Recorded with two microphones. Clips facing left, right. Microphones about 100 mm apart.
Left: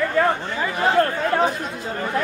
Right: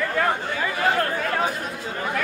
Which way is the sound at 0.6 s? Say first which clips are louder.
Left 5 dB; 25° left (ahead or behind).